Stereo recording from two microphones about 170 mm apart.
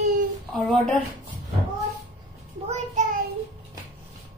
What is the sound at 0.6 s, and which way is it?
Speech, centre (ahead or behind).